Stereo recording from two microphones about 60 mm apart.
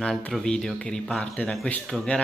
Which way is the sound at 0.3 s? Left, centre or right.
Centre.